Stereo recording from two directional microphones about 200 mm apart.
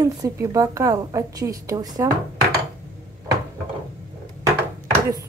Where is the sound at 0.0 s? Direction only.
15° right (ahead or behind).